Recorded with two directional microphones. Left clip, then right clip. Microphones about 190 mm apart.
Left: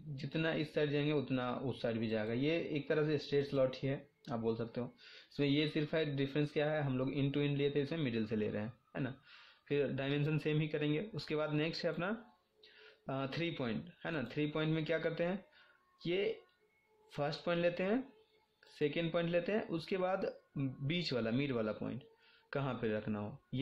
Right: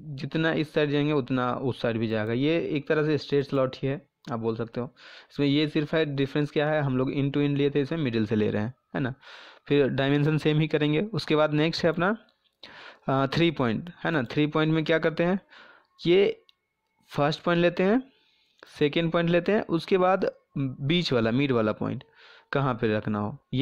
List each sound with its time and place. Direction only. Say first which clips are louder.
0.1 s speech: right 11 dB; 50° right (ahead or behind)